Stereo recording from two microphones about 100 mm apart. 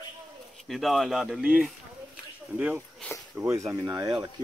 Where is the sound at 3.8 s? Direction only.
40° right (ahead or behind).